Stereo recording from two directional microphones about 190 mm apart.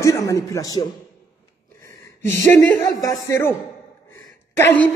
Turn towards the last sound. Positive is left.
turn(degrees=10)  # may be behind; listen again after turning